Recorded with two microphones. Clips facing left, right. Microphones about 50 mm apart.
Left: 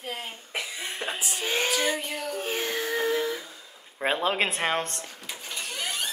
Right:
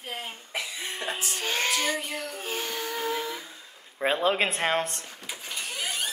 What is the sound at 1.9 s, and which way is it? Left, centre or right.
Speech, centre.